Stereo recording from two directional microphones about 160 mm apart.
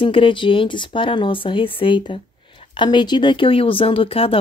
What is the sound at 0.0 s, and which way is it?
Speech, 35° left (ahead or behind).